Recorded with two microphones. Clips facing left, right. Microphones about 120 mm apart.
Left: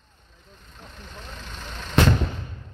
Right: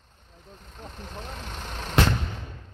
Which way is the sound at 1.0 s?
40° right (ahead or behind).